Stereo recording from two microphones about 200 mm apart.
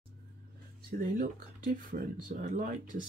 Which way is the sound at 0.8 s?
45° right (ahead or behind).